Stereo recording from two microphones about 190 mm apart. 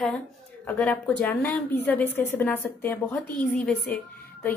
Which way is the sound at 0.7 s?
10° left (ahead or behind).